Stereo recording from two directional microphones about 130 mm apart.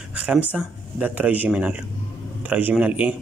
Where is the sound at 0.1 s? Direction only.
10° right (ahead or behind).